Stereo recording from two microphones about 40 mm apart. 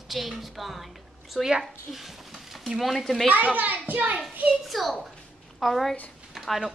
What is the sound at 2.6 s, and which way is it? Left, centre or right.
Speech, centre.